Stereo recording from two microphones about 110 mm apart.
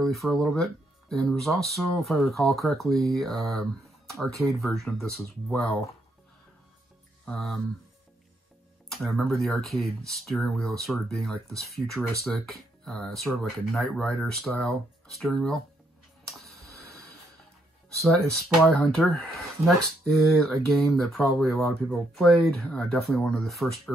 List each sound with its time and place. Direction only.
0.0 s speech: centre (ahead or behind)
7.2 s speech: 5° left (ahead or behind)
8.9 s speech: centre (ahead or behind)
18.0 s speech: 5° left (ahead or behind)